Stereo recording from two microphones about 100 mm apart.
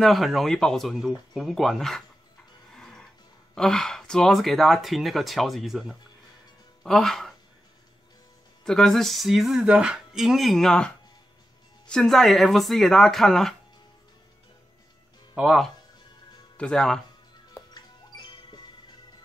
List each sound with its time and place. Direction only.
0.0 s speech: centre (ahead or behind)
2.7 s music: 5° left (ahead or behind)
3.5 s speech: 5° left (ahead or behind)
8.6 s speech: 5° left (ahead or behind)
11.9 s speech: centre (ahead or behind)
15.3 s speech: 5° right (ahead or behind)
16.5 s speech: 10° left (ahead or behind)
17.7 s music: 45° left (ahead or behind)